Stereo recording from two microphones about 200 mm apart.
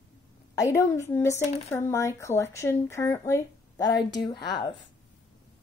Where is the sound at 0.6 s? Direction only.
15° left (ahead or behind).